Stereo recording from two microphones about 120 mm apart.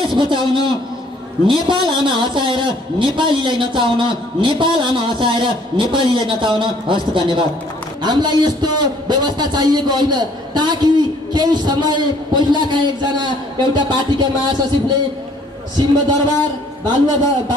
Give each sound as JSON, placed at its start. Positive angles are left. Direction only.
{"t": 0.2, "sound": "a man's voice", "side_deg": -40}
{"t": 16.9, "sound": "a man's voice", "side_deg": -35}